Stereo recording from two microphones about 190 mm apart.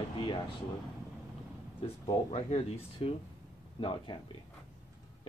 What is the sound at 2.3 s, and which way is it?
Speech, 35° left (ahead or behind).